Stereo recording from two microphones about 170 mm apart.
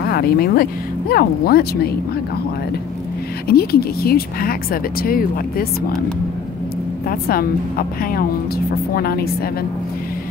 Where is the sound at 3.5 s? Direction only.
65° left (ahead or behind).